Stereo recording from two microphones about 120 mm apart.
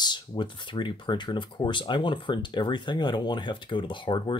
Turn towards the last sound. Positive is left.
turn(degrees=40)  # may be behind; listen again after turning